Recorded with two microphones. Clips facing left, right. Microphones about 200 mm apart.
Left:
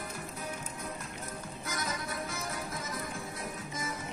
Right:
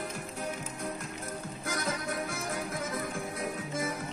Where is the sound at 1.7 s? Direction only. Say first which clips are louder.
Right 4 dB; 50° right (ahead or behind).